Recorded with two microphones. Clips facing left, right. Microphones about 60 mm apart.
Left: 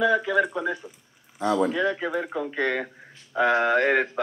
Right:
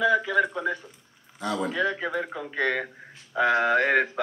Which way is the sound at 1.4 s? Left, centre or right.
Left.